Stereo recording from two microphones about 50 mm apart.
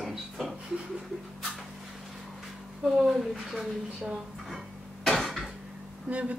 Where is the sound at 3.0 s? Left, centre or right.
Centre.